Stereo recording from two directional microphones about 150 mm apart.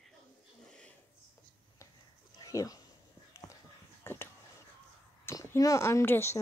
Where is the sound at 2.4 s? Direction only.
25° left (ahead or behind).